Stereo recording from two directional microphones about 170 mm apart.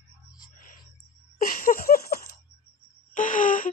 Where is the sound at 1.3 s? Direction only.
55° left (ahead or behind).